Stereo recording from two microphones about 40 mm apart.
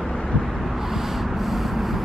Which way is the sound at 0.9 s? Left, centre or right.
Centre.